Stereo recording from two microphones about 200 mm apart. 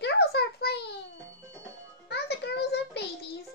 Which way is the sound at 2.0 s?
55° left (ahead or behind).